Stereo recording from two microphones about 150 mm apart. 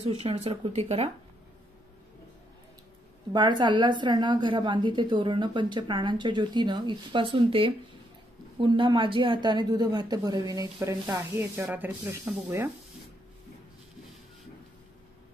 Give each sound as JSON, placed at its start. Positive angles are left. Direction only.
{"t": 0.0, "sound": "a woman's voice", "side_deg": -40}
{"t": 3.3, "sound": "a woman's voice", "side_deg": -30}